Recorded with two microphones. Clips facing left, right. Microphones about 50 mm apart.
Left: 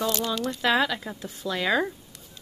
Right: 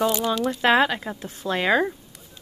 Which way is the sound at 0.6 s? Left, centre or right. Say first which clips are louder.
Right 4 dB; right.